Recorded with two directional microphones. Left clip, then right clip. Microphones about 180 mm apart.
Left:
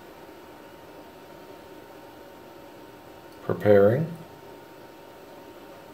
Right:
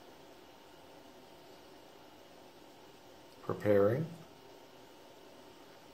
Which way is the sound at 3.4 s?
20° right (ahead or behind).